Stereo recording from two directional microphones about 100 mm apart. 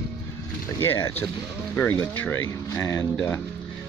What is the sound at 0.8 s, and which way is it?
Speech, 30° left (ahead or behind).